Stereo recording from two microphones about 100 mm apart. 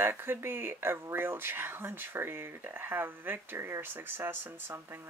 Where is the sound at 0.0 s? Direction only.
20° right (ahead or behind).